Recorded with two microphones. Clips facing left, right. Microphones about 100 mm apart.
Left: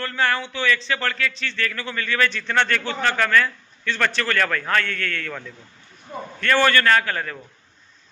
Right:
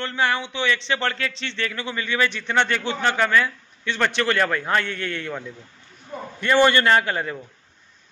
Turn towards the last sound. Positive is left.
turn(degrees=-20)  # may be behind; listen again after turning